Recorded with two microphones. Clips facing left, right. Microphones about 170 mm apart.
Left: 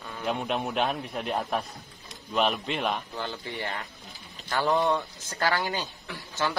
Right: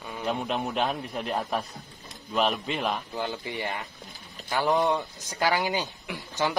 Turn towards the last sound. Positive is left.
turn(degrees=-15)  # may be behind; listen again after turning